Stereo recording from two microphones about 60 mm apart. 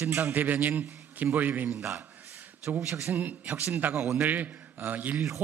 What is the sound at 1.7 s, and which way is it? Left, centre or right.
Speech, right.